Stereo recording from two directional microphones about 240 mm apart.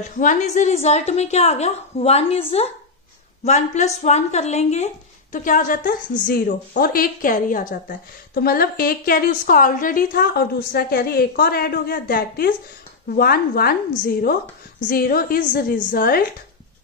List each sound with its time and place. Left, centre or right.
0.2 s a woman's voice: left
3.4 s a woman's voice: left
14.9 s a woman's voice: left